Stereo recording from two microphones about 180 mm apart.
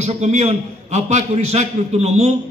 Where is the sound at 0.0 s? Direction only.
40° right (ahead or behind).